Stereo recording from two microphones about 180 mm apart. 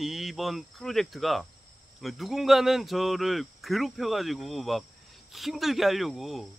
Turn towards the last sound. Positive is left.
turn(degrees=0)  # may be behind; listen again after turning